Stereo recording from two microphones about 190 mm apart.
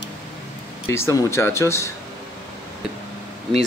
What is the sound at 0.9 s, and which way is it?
Speech, 15° left (ahead or behind).